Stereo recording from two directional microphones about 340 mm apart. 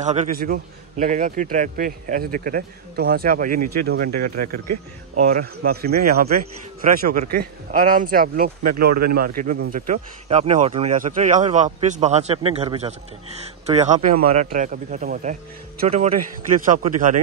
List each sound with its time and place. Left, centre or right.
0.0 s speech: right
8.7 s speech: right
9.1 s speech: right